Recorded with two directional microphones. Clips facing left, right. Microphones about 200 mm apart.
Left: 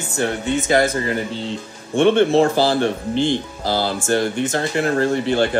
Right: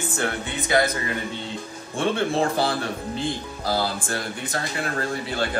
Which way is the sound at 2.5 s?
30° left (ahead or behind).